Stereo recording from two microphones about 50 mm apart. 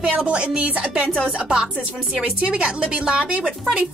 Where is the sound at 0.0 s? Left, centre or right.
Centre.